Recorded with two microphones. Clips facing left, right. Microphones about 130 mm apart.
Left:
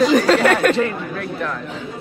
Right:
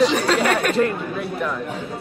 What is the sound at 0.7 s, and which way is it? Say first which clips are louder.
Speech: right 1 dB; 5° right (ahead or behind).